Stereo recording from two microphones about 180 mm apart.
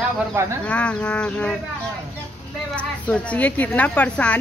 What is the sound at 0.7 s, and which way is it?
Speech, 5° left (ahead or behind).